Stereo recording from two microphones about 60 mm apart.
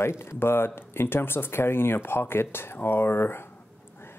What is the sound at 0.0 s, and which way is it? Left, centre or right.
Speech, left.